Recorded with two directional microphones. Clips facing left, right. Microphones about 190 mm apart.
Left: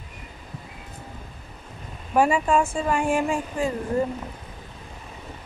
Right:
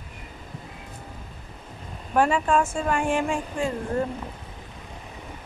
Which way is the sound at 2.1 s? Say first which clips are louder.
Left 1 dB; 10° left (ahead or behind).